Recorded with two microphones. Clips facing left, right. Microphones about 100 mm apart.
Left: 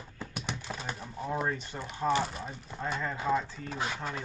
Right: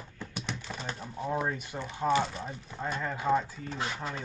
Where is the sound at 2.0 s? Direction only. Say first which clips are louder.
Right 1 dB; 5° right (ahead or behind).